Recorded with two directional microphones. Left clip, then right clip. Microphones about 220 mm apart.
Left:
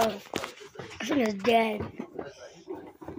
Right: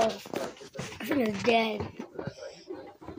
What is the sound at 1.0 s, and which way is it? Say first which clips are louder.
Speech: left 1 dB; 5° left (ahead or behind).